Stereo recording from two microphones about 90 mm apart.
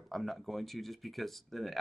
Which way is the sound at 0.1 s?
Centre (ahead or behind).